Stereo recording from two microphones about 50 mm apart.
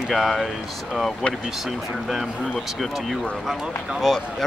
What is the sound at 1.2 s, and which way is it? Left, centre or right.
Speech, left.